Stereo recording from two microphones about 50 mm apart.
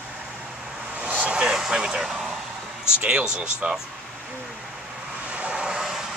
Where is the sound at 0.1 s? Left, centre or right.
Centre.